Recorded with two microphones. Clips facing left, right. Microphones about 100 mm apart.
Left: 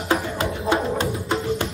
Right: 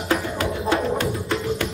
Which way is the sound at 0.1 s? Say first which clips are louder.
Even; 25° left (ahead or behind).